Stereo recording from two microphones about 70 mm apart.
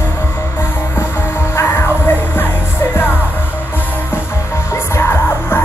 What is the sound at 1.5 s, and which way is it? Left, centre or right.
Music, left.